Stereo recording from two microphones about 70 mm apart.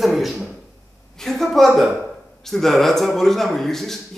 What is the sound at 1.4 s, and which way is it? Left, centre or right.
A man's voice, centre.